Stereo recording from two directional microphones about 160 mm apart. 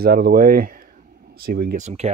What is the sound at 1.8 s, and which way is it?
Speech, 40° right (ahead or behind).